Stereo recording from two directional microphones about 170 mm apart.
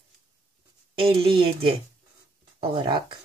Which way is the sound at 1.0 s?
30° right (ahead or behind).